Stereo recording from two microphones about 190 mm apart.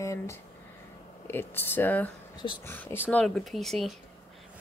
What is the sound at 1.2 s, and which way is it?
Speech, 10° left (ahead or behind).